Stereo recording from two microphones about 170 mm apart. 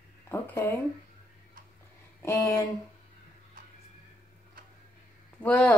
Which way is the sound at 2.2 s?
15° left (ahead or behind).